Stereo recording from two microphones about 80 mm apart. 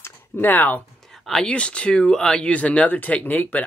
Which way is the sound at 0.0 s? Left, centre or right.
Left.